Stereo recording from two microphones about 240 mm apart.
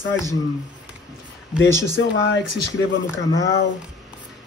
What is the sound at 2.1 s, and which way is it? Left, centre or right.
Speech, left.